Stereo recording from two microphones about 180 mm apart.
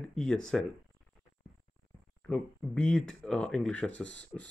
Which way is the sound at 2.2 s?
5° left (ahead or behind).